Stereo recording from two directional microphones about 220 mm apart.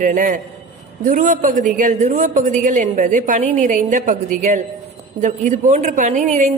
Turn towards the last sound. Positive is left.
turn(degrees=-30)  # may be behind; listen again after turning